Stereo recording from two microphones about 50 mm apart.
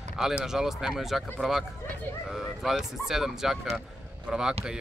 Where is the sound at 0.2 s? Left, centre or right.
Centre.